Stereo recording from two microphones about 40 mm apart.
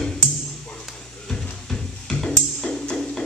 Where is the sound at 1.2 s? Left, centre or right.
Centre.